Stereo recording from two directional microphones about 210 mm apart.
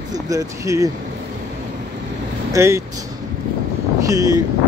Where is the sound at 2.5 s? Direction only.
15° right (ahead or behind).